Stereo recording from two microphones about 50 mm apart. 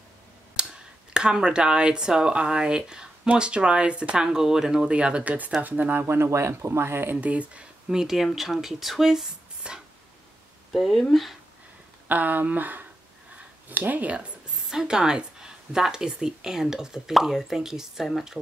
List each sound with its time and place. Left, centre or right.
0.6 s speech: centre
4.9 s speech: right
6.0 s speech: right
7.2 s speech: right
7.9 s speech: centre
9.6 s a sound: right
10.7 s speech: centre
12.1 s speech: right
14.6 s speech: centre